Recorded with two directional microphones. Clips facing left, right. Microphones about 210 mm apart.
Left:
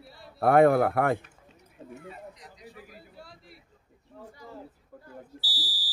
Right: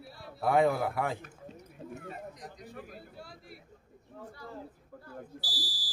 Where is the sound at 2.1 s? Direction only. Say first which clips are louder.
Right 2 dB; 50° right (ahead or behind).